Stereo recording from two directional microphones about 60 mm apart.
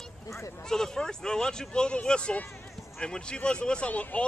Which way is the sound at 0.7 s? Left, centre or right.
Centre.